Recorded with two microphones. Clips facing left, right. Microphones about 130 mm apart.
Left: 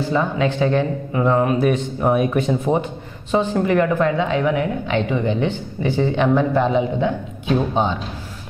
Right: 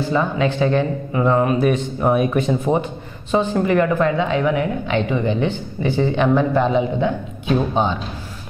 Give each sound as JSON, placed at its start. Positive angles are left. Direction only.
{"t": 0.1, "sound": "a woman's voice", "side_deg": -10}